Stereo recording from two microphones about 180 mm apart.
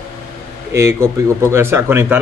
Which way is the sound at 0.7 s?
15° right (ahead or behind).